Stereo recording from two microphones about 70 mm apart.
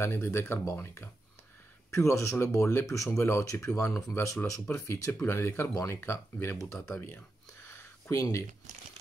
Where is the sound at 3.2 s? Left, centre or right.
Left.